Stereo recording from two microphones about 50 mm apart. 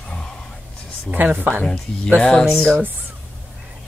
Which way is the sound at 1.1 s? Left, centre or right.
Right.